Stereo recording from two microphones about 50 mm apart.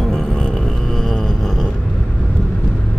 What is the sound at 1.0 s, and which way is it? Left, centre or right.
Music, centre.